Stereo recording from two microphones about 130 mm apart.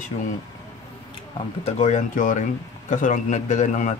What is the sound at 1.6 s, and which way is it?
A man's voice, 60° left (ahead or behind).